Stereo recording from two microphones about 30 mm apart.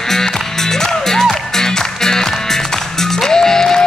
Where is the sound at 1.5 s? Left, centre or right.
Centre.